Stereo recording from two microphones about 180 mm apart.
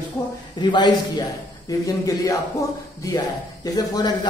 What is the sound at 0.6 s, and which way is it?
A man's voice, 25° left (ahead or behind).